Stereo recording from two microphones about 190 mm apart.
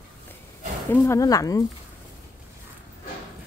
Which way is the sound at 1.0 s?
20° left (ahead or behind).